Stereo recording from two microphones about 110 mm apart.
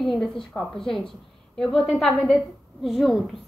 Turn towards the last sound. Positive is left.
turn(degrees=0)  # may be behind; listen again after turning